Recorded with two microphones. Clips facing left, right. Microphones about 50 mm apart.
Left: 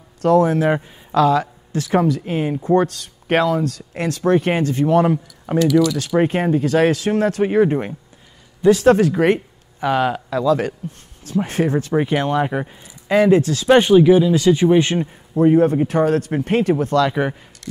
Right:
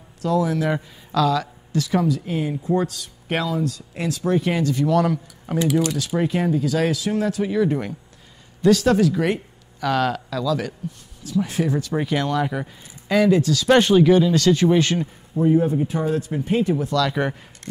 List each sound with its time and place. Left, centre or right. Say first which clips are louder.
0.2 s a man's voice: left 6 dB; left
5.9 s speech: left 4 dB; left
8.8 s speech: left 5 dB; left
9.8 s speech: left 3 dB; left
10.4 s speech: left 7 dB; left
11.9 s speech: left 4 dB; left
13.7 s speech: left 4 dB; centre
15.3 s speech: left 5 dB; left
17.1 s speech: left 3 dB; centre